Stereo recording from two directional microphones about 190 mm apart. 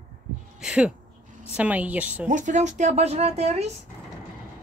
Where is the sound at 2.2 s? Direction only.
40° right (ahead or behind).